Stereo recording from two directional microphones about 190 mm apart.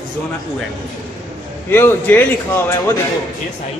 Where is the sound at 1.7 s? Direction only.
10° left (ahead or behind).